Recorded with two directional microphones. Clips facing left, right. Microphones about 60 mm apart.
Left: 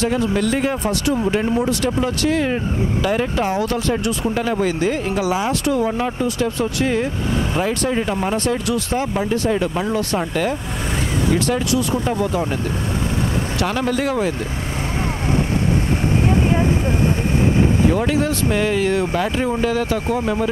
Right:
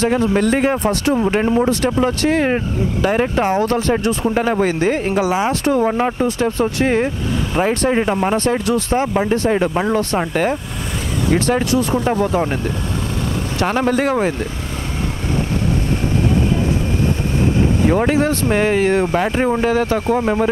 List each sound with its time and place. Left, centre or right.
0.0 s speech: right
13.6 s speech: right
17.9 s speech: right